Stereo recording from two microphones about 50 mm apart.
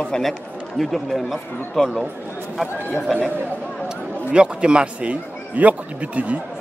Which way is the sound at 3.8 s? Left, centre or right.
Centre.